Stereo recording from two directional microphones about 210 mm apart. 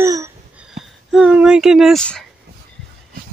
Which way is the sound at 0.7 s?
Centre (ahead or behind).